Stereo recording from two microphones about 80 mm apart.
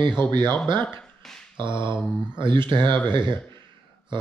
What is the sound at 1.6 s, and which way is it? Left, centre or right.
Mantra, right.